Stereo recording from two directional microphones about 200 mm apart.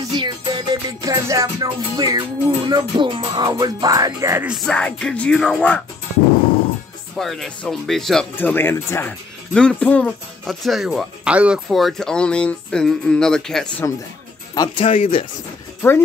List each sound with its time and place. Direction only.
0.1 s music: 20° right (ahead or behind)
4.6 s speech: 5° left (ahead or behind)
7.2 s speech: centre (ahead or behind)
14.5 s speech: 20° left (ahead or behind)